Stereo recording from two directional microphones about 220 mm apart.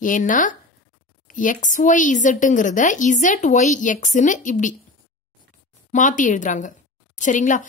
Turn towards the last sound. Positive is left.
turn(degrees=35)  # may be behind; listen again after turning